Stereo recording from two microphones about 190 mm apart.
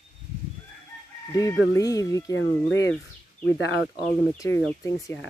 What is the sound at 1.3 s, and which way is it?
Speech, 20° left (ahead or behind).